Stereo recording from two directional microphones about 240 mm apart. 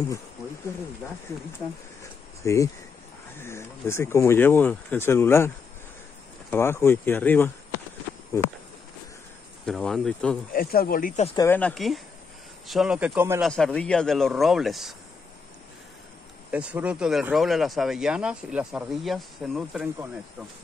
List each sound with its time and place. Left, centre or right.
2.4 s speech: centre
6.5 s speech: centre
9.7 s speech: centre
10.5 s speech: left
11.3 s speech: centre
16.4 s speech: centre